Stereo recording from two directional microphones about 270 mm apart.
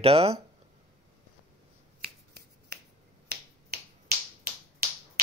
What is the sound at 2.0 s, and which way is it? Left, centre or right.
Finger snapping, right.